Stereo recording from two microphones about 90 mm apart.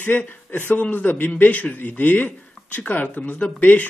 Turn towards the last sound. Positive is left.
turn(degrees=20)  # may be behind; listen again after turning